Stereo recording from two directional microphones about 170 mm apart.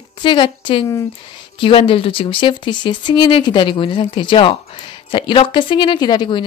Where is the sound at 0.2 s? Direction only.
30° left (ahead or behind).